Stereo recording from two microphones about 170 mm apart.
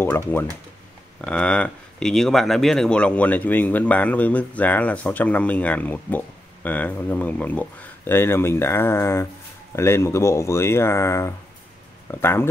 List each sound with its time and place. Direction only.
0.0 s speech: 15° left (ahead or behind)